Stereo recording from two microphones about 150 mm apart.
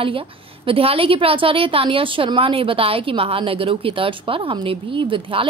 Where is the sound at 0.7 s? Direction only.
40° right (ahead or behind).